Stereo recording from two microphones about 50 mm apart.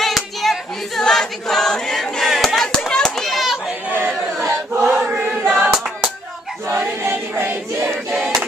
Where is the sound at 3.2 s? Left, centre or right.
Centre.